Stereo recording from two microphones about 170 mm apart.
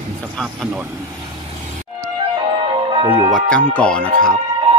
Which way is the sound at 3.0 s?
30° right (ahead or behind).